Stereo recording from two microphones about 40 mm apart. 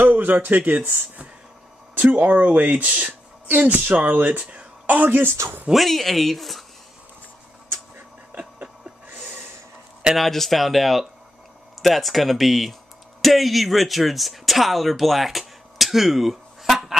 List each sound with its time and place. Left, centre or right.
0.1 s speech: right
2.0 s a woman's voice: right
3.7 s speech: right
4.8 s speech: right
5.7 s speech: centre
8.3 s a sound: right
9.1 s snort: right
10.1 s speech: centre